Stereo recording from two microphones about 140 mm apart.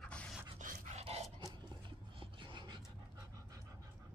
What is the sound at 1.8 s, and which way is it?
Dog, 35° right (ahead or behind).